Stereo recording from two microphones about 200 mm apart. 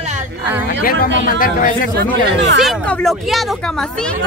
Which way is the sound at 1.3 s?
45° left (ahead or behind).